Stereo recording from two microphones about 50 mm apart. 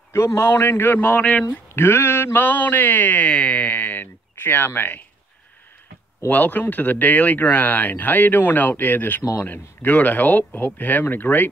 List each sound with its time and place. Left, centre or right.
0.1 s a man's voice: left
0.5 s a man's voice: left
0.9 s speech: left
1.8 s speech: left
3.3 s speech: left
6.2 s speech: left